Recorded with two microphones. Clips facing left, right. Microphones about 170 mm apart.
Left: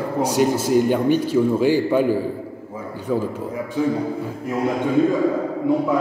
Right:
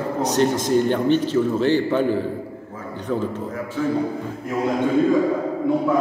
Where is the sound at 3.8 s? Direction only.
15° left (ahead or behind).